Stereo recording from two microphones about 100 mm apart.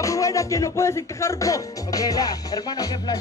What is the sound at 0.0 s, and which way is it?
Speech, 30° left (ahead or behind).